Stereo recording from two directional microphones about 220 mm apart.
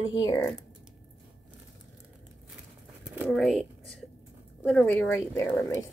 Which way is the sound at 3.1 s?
5° right (ahead or behind).